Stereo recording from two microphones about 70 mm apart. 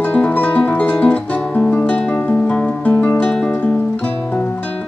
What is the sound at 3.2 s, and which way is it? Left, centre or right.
Music, centre.